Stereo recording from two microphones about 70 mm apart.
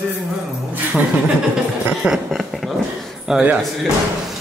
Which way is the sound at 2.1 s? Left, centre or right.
Centre.